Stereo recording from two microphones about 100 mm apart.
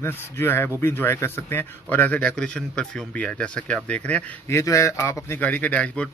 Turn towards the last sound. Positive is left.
turn(degrees=10)  # may be behind; listen again after turning